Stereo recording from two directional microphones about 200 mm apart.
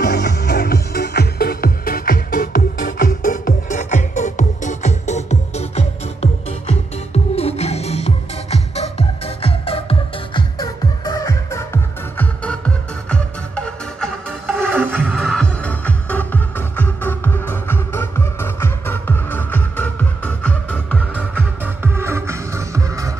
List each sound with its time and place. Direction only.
0.0 s music: 55° left (ahead or behind); by 14.7 s 5° left (ahead or behind)
14.7 s music: 10° right (ahead or behind)
15.0 s music: 5° left (ahead or behind)
21.4 s music: 10° right (ahead or behind)